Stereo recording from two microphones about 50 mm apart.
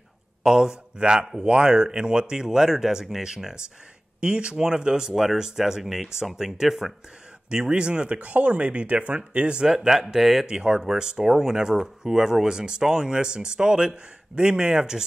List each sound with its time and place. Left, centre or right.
0.4 s speech: centre
7.4 s speech: centre